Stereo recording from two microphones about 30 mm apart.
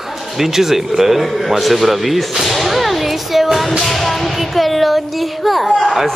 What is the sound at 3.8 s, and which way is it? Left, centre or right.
Music, centre.